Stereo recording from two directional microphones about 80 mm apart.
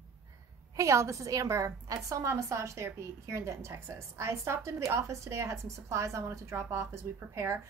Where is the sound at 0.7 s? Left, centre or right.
Right.